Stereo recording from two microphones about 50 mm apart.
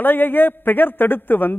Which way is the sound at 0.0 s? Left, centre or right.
Left.